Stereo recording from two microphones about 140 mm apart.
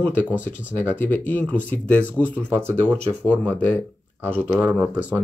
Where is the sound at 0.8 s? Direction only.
15° left (ahead or behind).